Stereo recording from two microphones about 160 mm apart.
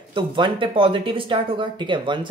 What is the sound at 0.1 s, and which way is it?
Speech, 30° right (ahead or behind).